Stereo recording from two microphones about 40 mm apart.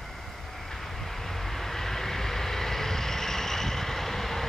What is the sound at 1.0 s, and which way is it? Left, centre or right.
Vehicle, centre.